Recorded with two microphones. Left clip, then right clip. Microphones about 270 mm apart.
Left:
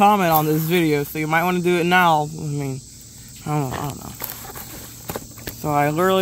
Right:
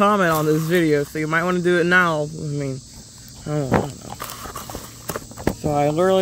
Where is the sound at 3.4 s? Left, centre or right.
Left.